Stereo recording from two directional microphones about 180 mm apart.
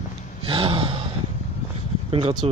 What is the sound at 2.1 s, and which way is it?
Speech, 25° right (ahead or behind).